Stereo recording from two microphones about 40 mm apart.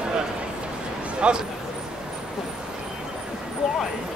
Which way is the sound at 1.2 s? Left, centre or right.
Right.